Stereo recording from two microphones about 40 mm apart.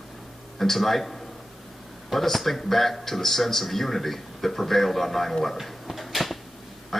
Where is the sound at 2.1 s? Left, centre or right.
Centre.